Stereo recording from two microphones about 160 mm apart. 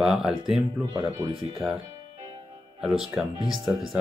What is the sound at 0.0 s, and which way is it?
Speech, centre (ahead or behind).